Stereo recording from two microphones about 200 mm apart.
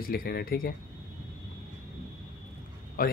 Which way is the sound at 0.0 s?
50° left (ahead or behind).